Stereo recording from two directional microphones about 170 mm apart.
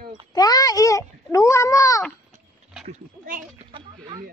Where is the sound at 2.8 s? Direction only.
50° right (ahead or behind).